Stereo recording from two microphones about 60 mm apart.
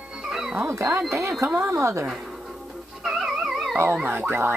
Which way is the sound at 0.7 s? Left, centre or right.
Right.